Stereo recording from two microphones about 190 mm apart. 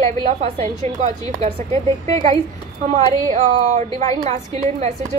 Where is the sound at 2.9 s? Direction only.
40° right (ahead or behind).